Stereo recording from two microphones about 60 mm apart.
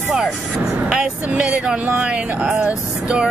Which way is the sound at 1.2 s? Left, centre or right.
Right.